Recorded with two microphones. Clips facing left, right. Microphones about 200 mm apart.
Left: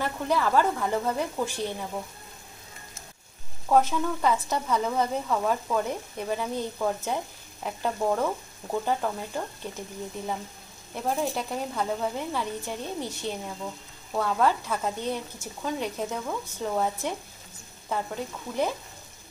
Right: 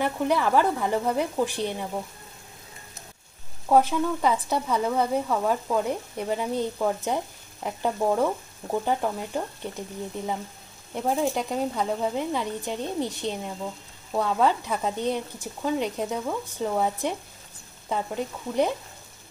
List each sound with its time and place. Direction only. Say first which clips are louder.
0.0 s speech: right 3 dB; 15° right (ahead or behind)
3.6 s speech: right 2 dB; 10° right (ahead or behind)